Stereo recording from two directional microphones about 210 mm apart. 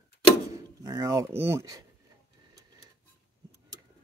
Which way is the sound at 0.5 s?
15° right (ahead or behind).